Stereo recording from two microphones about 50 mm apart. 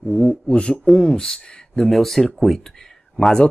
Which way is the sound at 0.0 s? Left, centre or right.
Centre.